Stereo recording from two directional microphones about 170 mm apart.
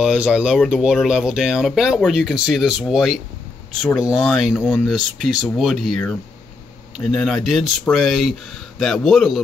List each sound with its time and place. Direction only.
0.0 s speech: 5° right (ahead or behind)
4.6 s speech: 10° left (ahead or behind)